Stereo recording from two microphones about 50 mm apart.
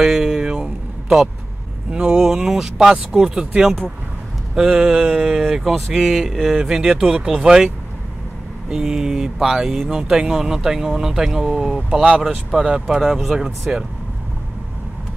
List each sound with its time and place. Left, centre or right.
0.0 s a sound: centre
1.0 s vehicle: centre
1.9 s speech: centre
4.6 s speech: centre
5.5 s speech: centre
6.6 s speech: centre
12.4 s speech: centre